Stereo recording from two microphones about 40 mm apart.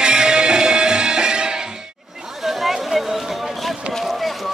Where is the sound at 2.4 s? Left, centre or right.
Centre.